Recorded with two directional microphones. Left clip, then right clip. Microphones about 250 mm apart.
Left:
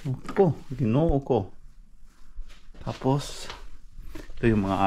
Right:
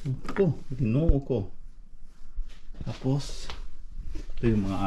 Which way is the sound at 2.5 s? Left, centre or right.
Centre.